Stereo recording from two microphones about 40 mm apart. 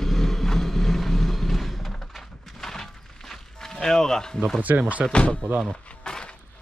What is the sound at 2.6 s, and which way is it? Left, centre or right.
Music, centre.